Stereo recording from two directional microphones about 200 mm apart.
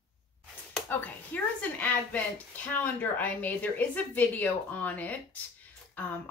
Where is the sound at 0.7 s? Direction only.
10° left (ahead or behind).